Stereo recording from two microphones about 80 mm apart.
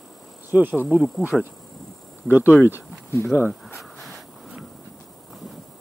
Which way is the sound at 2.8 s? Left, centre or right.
Left.